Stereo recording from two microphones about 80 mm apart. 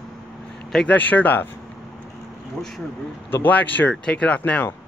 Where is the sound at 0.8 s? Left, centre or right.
Left.